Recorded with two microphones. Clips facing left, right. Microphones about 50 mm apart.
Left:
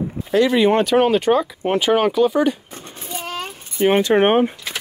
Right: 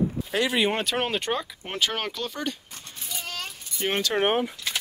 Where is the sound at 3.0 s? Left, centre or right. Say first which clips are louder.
Left 7 dB; left.